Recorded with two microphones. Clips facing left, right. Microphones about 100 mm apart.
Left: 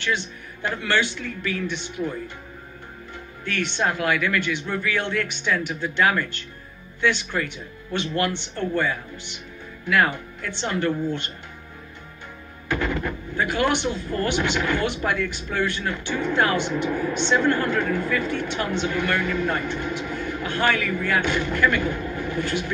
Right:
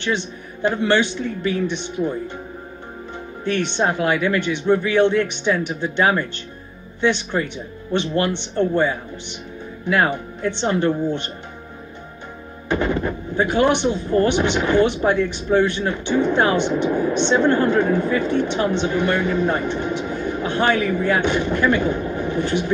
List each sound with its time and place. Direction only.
0.0 s speech: 20° right (ahead or behind)
3.4 s speech: 20° right (ahead or behind)
12.6 s speech: 25° right (ahead or behind)